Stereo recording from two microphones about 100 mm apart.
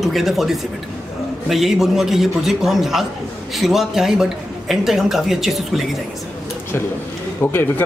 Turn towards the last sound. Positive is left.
turn(degrees=20)  # may be behind; listen again after turning